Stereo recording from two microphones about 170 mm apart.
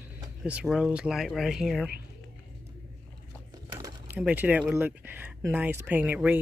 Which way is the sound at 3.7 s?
20° right (ahead or behind).